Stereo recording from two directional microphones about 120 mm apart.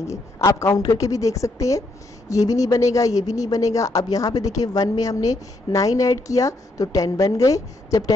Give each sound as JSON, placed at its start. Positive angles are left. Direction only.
{"t": 0.0, "sound": "a woman's voice", "side_deg": 25}